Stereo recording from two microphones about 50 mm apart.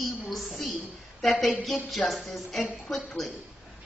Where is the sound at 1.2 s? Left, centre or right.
Centre.